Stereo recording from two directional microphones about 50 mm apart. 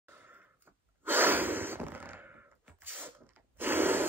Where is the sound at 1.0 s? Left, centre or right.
Right.